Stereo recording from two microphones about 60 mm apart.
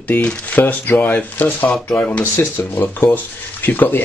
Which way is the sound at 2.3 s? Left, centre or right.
Left.